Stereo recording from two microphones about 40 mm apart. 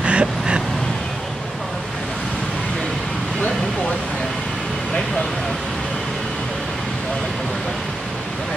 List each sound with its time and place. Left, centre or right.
0.0 s vehicle: right